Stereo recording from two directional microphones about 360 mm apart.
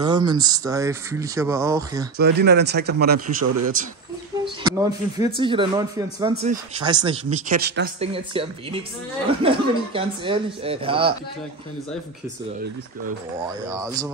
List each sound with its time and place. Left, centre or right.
0.0 s speech: centre
2.1 s speech: right
4.6 s speech: centre
13.7 s speech: centre